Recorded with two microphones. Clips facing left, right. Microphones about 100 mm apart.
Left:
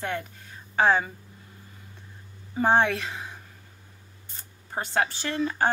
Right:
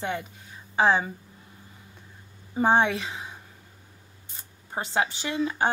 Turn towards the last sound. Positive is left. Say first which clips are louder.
# even
turn(degrees=-10)  # may be behind; listen again after turning